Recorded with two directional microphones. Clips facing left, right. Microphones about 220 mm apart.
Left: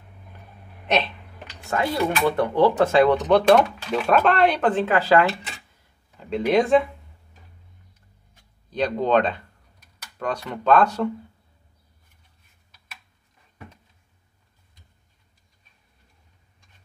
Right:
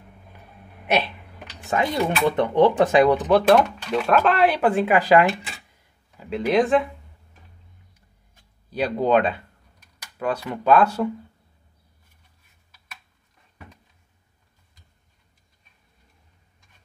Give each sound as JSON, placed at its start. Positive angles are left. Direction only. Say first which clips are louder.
{"t": 0.8, "sound": "speech", "louder": "even", "side_deg": -10}
{"t": 3.2, "sound": "speech", "louder": "even", "side_deg": -5}
{"t": 6.1, "sound": "speech", "louder": "even", "side_deg": 0}
{"t": 8.6, "sound": "speech", "louder": "right 1 dB", "side_deg": -10}